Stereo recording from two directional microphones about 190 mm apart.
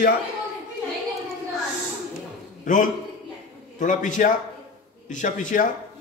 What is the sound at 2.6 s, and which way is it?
A man's voice, 45° left (ahead or behind).